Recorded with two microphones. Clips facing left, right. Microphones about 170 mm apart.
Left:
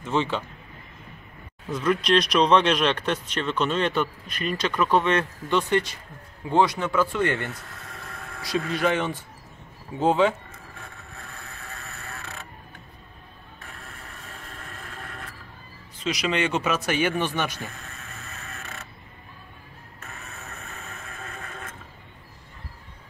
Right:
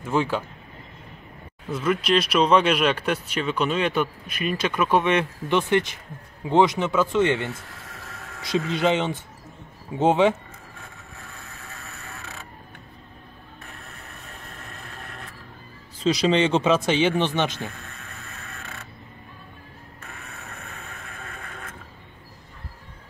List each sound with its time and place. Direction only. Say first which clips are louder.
0.0 s speech: right 2 dB; 10° right (ahead or behind)
1.7 s speech: even; 5° right (ahead or behind); by 10.3 s 20° right (ahead or behind)
16.0 s speech: right 6 dB; 30° right (ahead or behind)